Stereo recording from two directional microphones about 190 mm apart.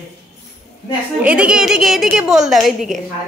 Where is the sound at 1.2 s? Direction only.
5° right (ahead or behind).